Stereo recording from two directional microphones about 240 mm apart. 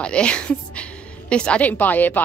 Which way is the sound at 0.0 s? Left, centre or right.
Centre.